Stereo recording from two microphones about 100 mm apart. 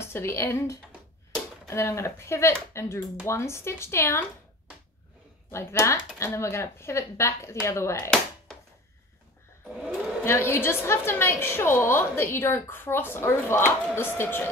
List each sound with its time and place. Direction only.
0.0 s a woman's voice: 25° left (ahead or behind)
5.5 s a woman's voice: 25° left (ahead or behind)
10.2 s a woman's voice: 25° left (ahead or behind)